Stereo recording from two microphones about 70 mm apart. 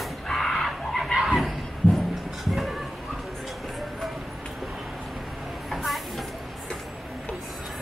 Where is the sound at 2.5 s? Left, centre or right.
Centre.